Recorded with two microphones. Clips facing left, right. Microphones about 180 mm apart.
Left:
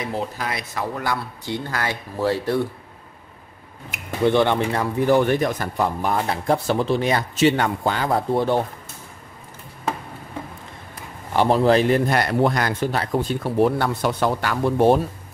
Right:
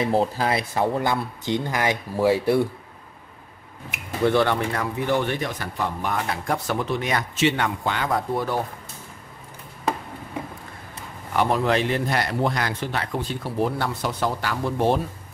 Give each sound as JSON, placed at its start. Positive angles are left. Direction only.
{"t": 0.0, "sound": "speech", "side_deg": -30}
{"t": 4.2, "sound": "speech", "side_deg": 20}
{"t": 4.9, "sound": "a man's voice", "side_deg": 40}
{"t": 6.1, "sound": "speech", "side_deg": 30}
{"t": 11.3, "sound": "a man's voice", "side_deg": 30}
{"t": 13.6, "sound": "speech", "side_deg": 60}